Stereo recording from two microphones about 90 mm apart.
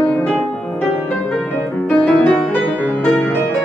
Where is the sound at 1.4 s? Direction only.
20° left (ahead or behind).